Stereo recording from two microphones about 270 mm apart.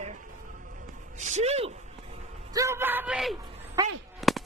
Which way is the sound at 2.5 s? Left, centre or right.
Centre.